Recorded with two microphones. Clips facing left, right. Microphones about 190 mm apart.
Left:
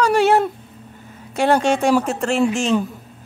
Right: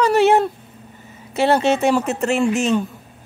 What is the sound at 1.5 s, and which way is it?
Speech, 5° right (ahead or behind).